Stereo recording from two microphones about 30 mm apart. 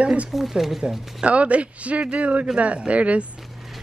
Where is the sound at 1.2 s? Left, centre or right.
Right.